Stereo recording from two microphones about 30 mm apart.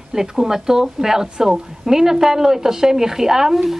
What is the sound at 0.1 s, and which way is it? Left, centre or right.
Speech, centre.